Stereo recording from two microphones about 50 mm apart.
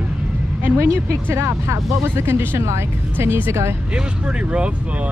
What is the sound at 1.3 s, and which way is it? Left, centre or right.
Speech, right.